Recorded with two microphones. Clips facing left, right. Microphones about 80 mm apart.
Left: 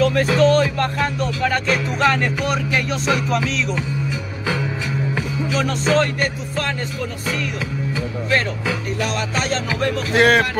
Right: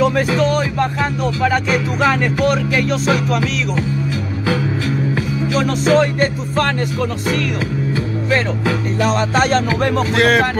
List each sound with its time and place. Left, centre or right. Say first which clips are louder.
0.0 s music: even; centre
5.5 s music: right 4 dB; centre
9.0 s music: right 9 dB; right
10.1 s speech: left 1 dB; centre